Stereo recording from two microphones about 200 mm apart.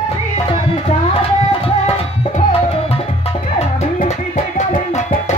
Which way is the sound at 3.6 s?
35° left (ahead or behind).